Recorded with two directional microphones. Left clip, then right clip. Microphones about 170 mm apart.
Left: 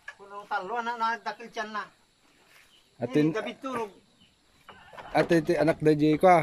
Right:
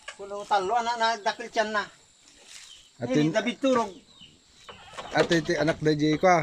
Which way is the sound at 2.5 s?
Centre (ahead or behind).